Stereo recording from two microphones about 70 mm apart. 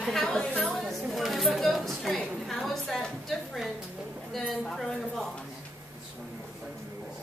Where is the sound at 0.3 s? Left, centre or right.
Centre.